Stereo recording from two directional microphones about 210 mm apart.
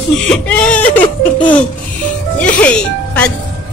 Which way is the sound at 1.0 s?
20° left (ahead or behind).